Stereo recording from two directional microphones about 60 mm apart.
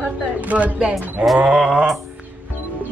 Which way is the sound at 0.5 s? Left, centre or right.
Right.